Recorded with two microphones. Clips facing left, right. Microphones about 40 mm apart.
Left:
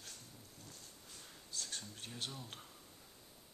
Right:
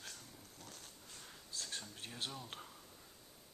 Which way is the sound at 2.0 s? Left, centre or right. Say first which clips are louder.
Right 1 dB; centre.